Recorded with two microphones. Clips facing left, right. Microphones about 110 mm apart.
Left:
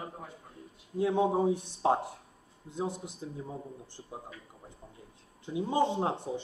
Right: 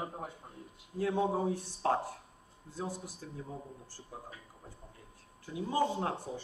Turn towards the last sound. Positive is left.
turn(degrees=25)  # may be behind; listen again after turning